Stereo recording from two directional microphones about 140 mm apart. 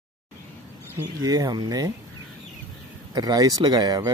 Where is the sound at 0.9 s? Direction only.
25° right (ahead or behind).